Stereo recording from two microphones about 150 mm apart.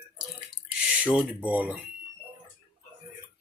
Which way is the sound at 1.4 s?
10° right (ahead or behind).